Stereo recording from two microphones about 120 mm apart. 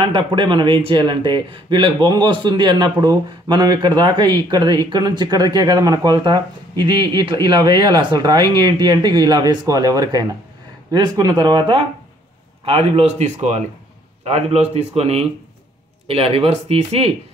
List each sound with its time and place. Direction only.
0.0 s speech: 40° right (ahead or behind)
12.6 s speech: 50° right (ahead or behind)